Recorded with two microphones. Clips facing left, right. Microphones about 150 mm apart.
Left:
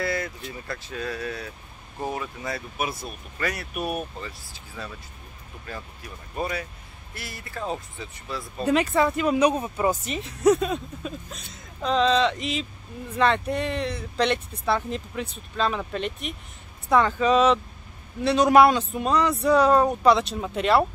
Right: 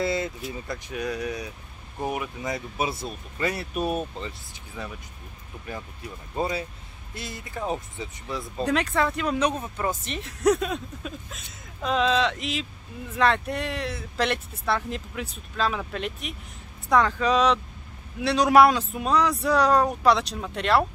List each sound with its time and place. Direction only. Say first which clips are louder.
0.0 s vehicle: right 2 dB; 25° right (ahead or behind)
0.7 s speech: right 1 dB; 15° right (ahead or behind)
8.6 s speech: left 3 dB; 5° left (ahead or behind)
10.1 s speech: left 1 dB; centre (ahead or behind)